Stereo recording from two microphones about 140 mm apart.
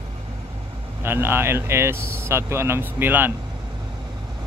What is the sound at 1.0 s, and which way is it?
Speech, 15° right (ahead or behind).